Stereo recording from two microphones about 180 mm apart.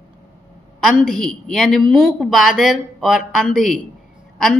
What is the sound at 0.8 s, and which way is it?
A woman's voice, centre (ahead or behind).